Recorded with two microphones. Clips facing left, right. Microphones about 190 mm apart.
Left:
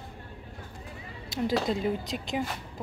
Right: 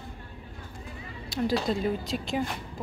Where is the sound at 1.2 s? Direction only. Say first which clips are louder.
Right 1 dB; 20° left (ahead or behind).